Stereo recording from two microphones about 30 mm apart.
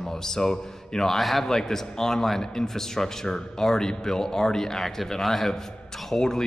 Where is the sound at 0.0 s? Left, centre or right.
Centre.